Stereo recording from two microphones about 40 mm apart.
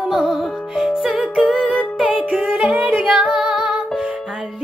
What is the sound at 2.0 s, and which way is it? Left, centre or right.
Music, right.